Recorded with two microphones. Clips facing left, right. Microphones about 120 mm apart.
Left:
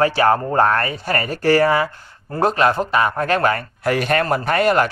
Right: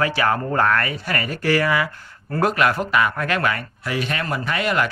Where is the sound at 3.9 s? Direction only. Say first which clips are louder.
Left 7 dB; 50° left (ahead or behind).